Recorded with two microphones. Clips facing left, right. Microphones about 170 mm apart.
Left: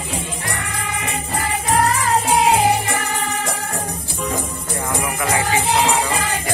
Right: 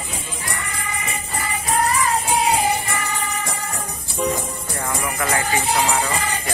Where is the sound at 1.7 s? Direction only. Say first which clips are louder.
Left 2 dB; 75° left (ahead or behind).